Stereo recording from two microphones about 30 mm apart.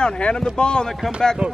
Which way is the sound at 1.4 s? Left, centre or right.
Right.